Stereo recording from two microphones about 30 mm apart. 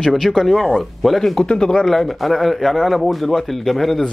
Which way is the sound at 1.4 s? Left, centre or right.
Centre.